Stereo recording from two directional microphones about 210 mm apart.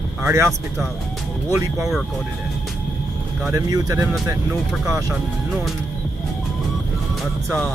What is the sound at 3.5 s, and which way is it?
Speech, 15° right (ahead or behind).